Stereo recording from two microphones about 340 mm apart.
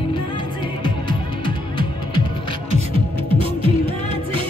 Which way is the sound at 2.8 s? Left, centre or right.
Centre.